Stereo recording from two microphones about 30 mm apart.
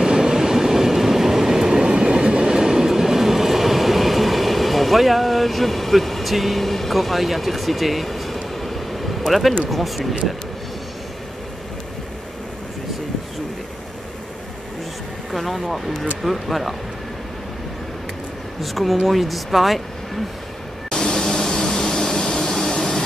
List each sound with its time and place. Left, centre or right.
0.0 s train: centre
1.9 s train: right
2.6 s train: centre
9.3 s speech: centre
15.3 s speech: centre
18.6 s speech: centre
20.9 s vacuum cleaner: centre